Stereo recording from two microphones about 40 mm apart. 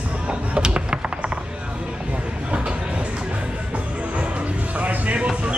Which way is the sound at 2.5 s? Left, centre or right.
Right.